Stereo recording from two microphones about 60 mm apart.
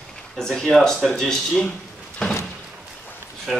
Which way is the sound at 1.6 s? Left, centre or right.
Centre.